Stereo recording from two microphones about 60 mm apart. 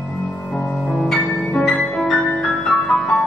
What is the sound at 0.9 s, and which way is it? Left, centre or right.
Music, centre.